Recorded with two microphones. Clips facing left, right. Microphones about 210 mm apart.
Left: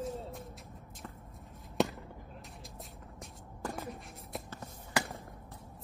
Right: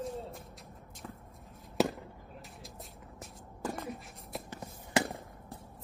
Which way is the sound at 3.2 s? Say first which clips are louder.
Right 2 dB; centre (ahead or behind).